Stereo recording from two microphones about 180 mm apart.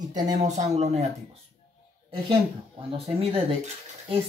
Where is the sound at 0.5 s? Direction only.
40° right (ahead or behind).